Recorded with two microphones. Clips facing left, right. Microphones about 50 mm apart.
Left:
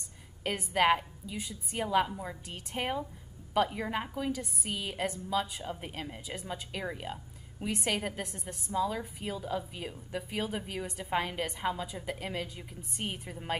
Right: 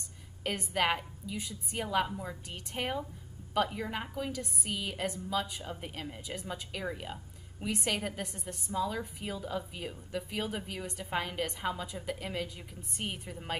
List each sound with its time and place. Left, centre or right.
0.4 s a woman's voice: centre